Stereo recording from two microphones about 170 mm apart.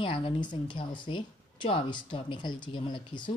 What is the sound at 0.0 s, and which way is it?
Speech, 30° left (ahead or behind).